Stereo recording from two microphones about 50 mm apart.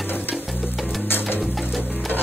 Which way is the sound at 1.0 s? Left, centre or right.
Left.